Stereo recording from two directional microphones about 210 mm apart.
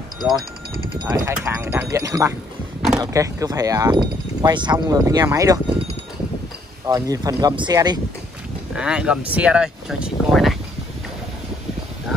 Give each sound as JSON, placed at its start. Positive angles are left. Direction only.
{"t": 1.0, "sound": "speech", "side_deg": -10}
{"t": 6.9, "sound": "speech", "side_deg": -15}
{"t": 8.7, "sound": "speech", "side_deg": -5}